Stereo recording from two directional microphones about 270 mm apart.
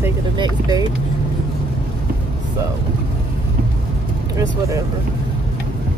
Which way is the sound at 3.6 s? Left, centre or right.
Right.